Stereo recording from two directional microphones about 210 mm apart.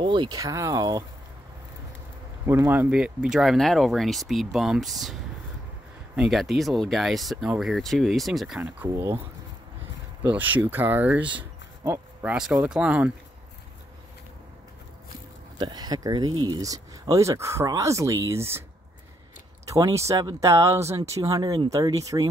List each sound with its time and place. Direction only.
0.0 s speech: 20° right (ahead or behind)
2.4 s speech: 10° right (ahead or behind)
6.1 s speech: centre (ahead or behind)
10.2 s speech: 5° right (ahead or behind)
15.5 s speech: 20° right (ahead or behind)
19.7 s speech: 15° right (ahead or behind)